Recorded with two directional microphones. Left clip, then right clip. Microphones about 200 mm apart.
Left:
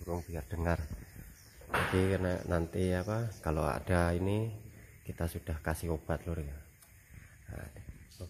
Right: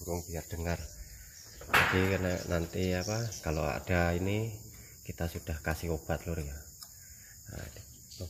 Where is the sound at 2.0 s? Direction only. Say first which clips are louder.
Right 1 dB; 15° left (ahead or behind).